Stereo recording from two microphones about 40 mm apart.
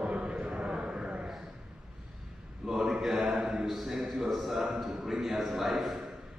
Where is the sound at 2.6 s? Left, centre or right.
Centre.